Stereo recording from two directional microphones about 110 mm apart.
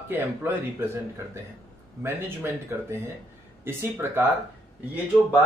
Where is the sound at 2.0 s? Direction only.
20° right (ahead or behind).